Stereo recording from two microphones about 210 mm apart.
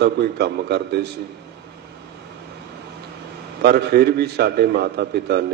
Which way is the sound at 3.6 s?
50° right (ahead or behind).